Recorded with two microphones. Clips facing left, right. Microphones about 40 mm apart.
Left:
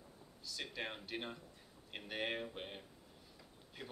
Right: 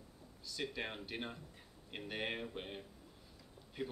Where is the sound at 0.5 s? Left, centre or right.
Centre.